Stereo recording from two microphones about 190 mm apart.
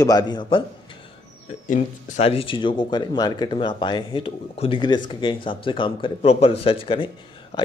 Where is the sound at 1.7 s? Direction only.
40° left (ahead or behind).